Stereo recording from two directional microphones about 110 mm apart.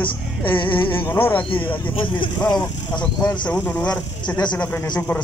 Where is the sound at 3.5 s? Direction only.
10° left (ahead or behind).